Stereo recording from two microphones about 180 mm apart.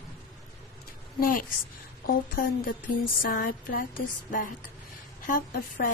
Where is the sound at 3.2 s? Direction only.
50° left (ahead or behind).